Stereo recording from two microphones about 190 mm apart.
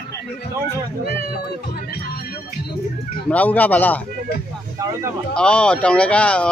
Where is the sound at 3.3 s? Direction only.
10° left (ahead or behind).